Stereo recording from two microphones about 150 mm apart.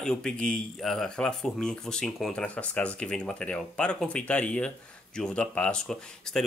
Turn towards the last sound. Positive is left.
turn(degrees=5)  # may be behind; listen again after turning